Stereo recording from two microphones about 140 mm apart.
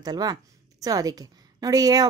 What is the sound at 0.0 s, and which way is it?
A woman's voice, 30° right (ahead or behind).